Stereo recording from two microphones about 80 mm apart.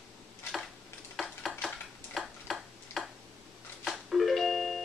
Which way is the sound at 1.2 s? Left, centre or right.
Centre.